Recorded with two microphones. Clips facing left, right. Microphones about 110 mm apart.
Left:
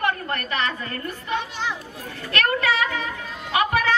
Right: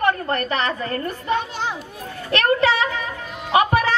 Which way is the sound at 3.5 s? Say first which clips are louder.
Right 4 dB; 30° right (ahead or behind).